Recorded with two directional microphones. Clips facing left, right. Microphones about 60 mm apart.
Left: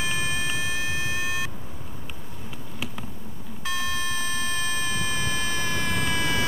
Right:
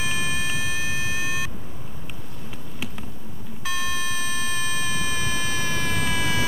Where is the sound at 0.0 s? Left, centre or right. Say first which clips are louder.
Right 1 dB; centre.